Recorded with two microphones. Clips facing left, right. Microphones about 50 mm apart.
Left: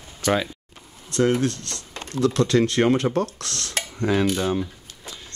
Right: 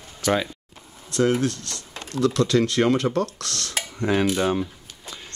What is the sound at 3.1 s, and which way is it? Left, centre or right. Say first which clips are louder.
Speech: even; left.